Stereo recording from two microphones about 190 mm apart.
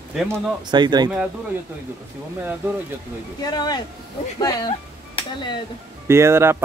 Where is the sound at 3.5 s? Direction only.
20° left (ahead or behind).